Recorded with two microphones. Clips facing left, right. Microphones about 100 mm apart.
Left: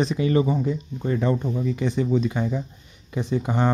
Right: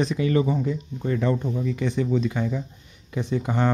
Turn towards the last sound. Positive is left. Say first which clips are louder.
# left 1 dB
turn(degrees=15)  # may be behind; listen again after turning